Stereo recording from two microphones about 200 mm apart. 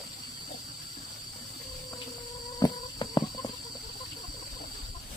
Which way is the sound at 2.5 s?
20° left (ahead or behind).